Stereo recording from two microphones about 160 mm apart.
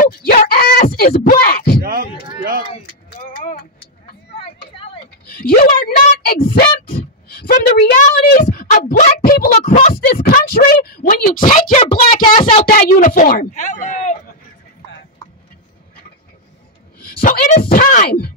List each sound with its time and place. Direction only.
0.0 s speech: 65° left (ahead or behind)
0.4 s a sound: 70° left (ahead or behind)
3.2 s vehicle: 65° left (ahead or behind)
5.3 s speech: 65° left (ahead or behind)
6.5 s a woman's voice: 80° left; by 9.9 s 60° left (ahead or behind)
9.9 s a sound: 65° left (ahead or behind)
11.8 s speech: 35° left (ahead or behind)
12.6 s speech: 60° left (ahead or behind)
17.0 s speech: 60° left (ahead or behind)